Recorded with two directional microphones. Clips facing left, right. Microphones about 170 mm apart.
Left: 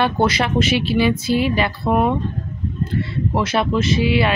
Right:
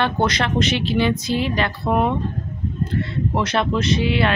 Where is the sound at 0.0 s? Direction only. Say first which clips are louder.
Left 2 dB; 5° left (ahead or behind).